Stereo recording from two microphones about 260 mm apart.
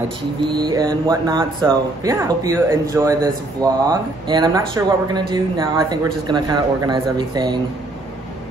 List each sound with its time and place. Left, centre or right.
0.5 s speech: centre